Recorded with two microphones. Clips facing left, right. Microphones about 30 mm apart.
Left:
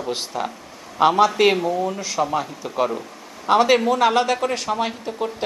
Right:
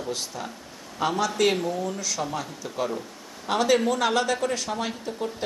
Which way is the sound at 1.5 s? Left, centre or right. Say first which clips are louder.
Left 6 dB; centre.